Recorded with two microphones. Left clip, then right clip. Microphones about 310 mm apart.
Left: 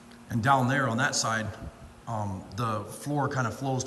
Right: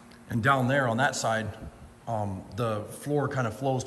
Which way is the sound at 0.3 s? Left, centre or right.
Centre.